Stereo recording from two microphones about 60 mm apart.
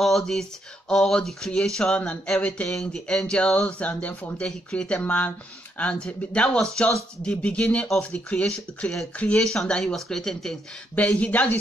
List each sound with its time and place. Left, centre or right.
0.0 s speech: centre; by 8.9 s left
9.4 s speech: centre
11.1 s speech: left